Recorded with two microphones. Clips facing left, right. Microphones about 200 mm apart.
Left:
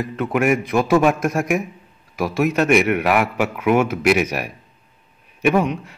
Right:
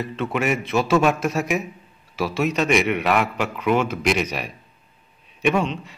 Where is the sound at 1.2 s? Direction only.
55° left (ahead or behind).